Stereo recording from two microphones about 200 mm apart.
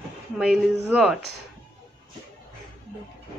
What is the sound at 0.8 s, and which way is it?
Speech, 5° right (ahead or behind).